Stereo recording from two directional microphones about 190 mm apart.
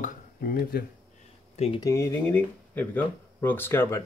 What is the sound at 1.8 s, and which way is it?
Speech, 15° left (ahead or behind).